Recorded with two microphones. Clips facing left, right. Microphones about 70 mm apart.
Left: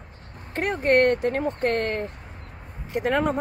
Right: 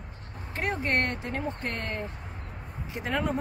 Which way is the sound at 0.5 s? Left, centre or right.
Left.